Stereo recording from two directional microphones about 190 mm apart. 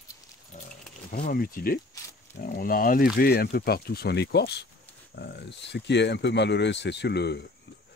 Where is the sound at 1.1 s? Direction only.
55° left (ahead or behind).